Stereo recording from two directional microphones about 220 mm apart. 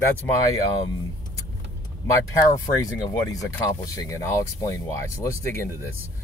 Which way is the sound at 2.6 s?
20° left (ahead or behind).